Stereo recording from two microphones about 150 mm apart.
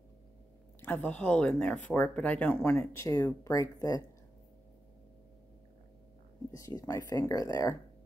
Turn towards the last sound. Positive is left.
turn(degrees=25)  # may be behind; listen again after turning